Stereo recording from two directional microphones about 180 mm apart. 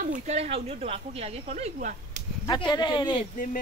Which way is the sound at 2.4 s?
25° left (ahead or behind).